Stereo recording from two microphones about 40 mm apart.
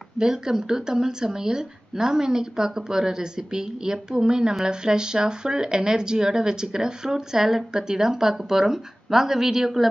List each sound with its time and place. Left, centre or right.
0.2 s speech: centre